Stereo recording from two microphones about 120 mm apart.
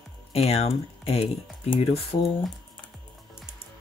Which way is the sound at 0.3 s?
60° left (ahead or behind).